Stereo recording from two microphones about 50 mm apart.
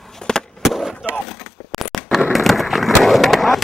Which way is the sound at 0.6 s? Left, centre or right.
Centre.